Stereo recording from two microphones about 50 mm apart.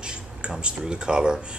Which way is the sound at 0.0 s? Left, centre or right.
Centre.